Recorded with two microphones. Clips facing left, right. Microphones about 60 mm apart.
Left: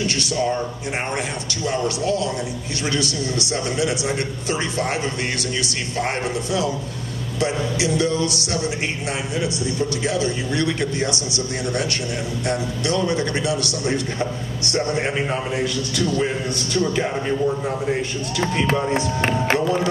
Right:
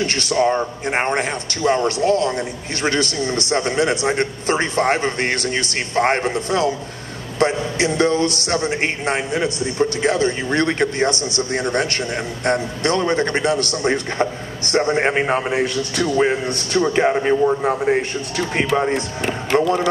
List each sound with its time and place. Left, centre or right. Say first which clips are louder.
0.0 s a man's voice: right 4 dB; right
19.5 s speech: right 5 dB; right